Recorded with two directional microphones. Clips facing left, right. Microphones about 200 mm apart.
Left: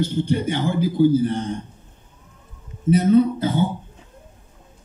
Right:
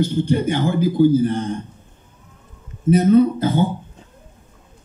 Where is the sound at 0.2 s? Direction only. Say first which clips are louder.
Right 3 dB; 45° right (ahead or behind).